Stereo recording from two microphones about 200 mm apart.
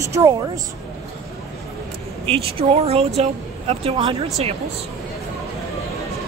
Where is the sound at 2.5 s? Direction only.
30° right (ahead or behind).